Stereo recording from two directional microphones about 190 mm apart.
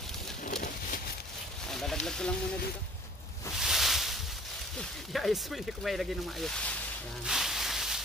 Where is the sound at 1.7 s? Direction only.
Centre (ahead or behind).